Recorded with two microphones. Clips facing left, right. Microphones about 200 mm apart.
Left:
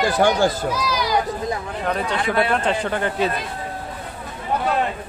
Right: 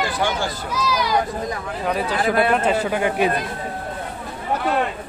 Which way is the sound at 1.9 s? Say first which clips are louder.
Right 2 dB; 5° right (ahead or behind).